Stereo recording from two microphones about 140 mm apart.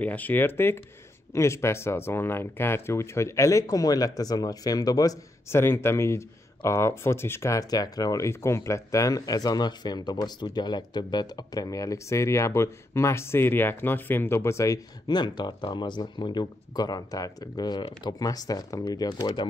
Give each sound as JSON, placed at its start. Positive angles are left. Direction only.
{"t": 0.0, "sound": "speech", "side_deg": 10}